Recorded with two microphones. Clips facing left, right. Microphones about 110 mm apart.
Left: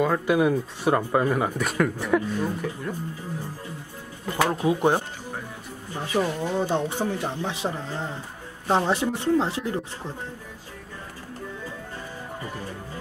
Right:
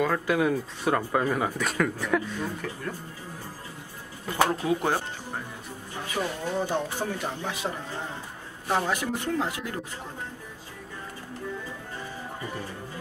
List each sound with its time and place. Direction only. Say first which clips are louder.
0.0 s speech: left 3 dB; 10° left (ahead or behind)
4.5 s speech: left 4 dB; 20° left (ahead or behind)
6.1 s speech: left 5 dB; 20° left (ahead or behind)